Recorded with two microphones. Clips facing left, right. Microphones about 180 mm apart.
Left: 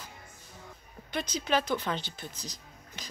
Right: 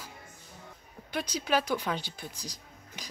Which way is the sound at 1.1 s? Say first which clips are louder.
Even; 10° right (ahead or behind).